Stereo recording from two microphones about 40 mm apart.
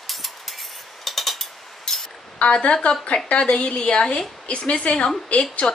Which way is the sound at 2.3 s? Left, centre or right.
Left.